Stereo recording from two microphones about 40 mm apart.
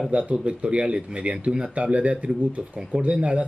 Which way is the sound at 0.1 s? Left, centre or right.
Right.